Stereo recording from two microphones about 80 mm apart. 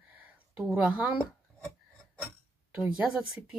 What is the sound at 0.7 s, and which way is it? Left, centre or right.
Speech, centre.